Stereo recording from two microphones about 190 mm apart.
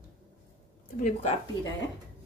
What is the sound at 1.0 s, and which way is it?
Speech, 40° left (ahead or behind).